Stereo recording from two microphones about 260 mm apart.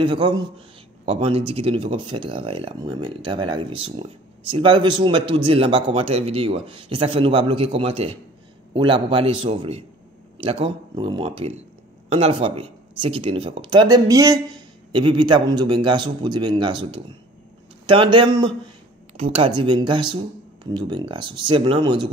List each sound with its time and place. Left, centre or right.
0.0 s speech: centre